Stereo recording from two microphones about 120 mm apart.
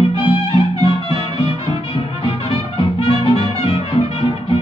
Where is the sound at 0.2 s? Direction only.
50° left (ahead or behind).